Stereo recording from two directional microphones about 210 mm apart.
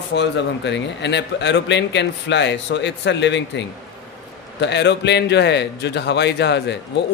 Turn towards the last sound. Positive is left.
turn(degrees=55)  # may be behind; listen again after turning